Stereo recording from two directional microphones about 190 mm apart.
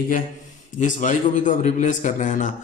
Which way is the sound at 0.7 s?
40° left (ahead or behind).